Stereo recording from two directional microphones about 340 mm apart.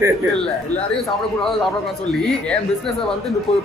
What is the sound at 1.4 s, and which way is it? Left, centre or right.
Speech, centre.